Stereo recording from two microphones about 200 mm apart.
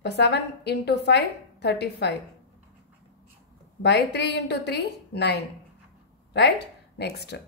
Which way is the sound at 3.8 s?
60° left (ahead or behind).